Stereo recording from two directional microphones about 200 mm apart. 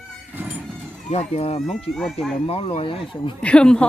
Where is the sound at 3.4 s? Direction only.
5° left (ahead or behind).